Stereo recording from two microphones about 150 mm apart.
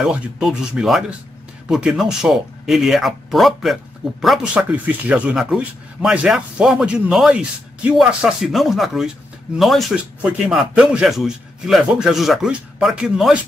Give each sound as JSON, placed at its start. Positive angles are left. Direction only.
{"t": 0.0, "sound": "speech", "side_deg": -5}